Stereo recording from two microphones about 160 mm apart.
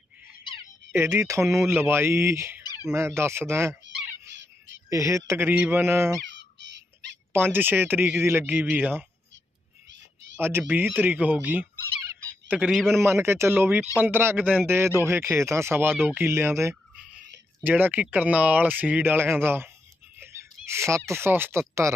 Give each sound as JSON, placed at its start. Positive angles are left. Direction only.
{"t": 0.9, "sound": "speech", "side_deg": -20}
{"t": 4.8, "sound": "speech", "side_deg": -20}
{"t": 6.6, "sound": "a sound", "side_deg": -90}
{"t": 7.3, "sound": "speech", "side_deg": -15}
{"t": 10.6, "sound": "fowl", "side_deg": -10}
{"t": 12.4, "sound": "a man's voice", "side_deg": -5}
{"t": 13.0, "sound": "speech", "side_deg": -15}